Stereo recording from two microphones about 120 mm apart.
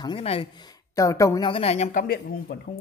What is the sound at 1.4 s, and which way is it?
Speech, 50° left (ahead or behind).